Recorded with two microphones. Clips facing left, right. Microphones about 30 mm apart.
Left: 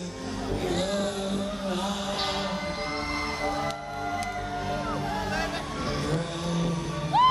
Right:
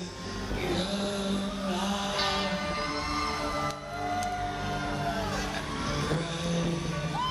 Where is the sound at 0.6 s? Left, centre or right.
Right.